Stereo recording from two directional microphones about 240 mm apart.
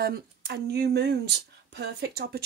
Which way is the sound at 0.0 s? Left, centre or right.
Right.